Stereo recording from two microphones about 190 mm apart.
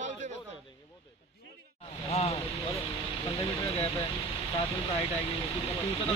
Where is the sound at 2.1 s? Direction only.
35° left (ahead or behind).